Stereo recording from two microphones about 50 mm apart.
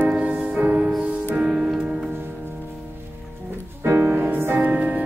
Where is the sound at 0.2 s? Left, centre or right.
Right.